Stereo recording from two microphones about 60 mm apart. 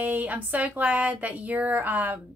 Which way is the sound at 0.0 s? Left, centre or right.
Right.